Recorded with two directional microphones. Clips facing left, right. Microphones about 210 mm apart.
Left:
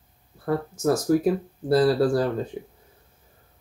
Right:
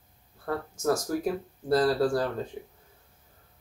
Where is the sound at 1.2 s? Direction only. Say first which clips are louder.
Left 7 dB; 10° left (ahead or behind).